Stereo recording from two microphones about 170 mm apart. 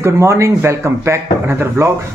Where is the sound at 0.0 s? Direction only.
15° right (ahead or behind).